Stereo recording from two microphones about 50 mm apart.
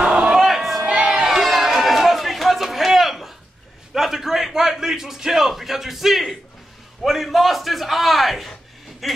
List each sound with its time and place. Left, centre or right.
0.0 s crowd: centre
0.3 s crowd: centre
0.8 s crowd: right
1.2 s a sound: centre
7.0 s a man's voice: centre
9.0 s a sound: centre